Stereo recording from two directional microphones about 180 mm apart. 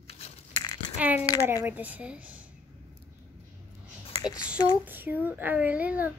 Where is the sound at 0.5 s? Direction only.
25° left (ahead or behind).